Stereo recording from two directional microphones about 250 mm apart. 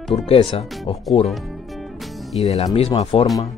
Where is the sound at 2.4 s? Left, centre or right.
Left.